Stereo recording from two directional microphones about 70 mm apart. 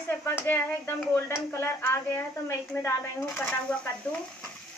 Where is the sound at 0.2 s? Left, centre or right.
Left.